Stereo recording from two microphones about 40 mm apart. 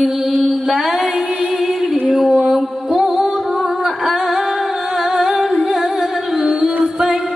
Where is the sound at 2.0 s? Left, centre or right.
Centre.